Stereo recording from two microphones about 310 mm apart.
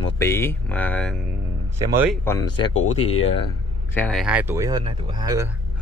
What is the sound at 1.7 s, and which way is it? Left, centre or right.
Speech, centre.